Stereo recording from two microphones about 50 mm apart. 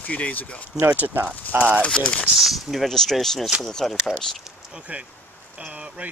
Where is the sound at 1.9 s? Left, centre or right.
Left.